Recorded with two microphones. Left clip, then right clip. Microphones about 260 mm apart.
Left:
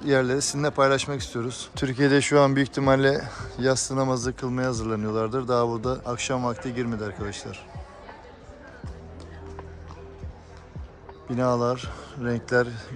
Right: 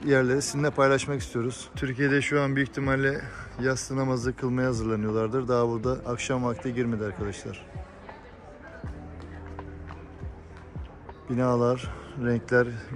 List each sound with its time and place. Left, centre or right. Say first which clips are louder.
0.0 s speech: left 1 dB; centre
1.8 s speech: left 4 dB; centre
11.3 s speech: left 1 dB; centre